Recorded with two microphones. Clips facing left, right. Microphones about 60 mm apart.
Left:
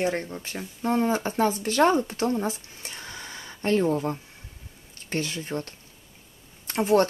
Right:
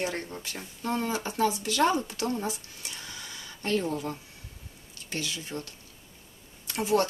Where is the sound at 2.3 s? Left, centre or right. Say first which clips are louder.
Left 4 dB; left.